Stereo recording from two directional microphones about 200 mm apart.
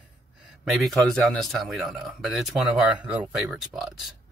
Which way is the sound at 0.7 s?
Centre (ahead or behind).